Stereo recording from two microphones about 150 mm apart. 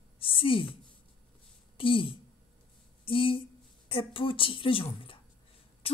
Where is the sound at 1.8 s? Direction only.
35° left (ahead or behind).